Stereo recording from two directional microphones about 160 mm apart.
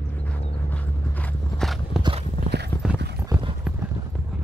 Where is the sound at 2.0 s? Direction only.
35° right (ahead or behind).